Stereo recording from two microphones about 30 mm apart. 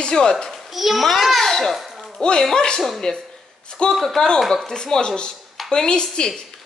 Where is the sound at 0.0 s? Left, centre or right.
Left.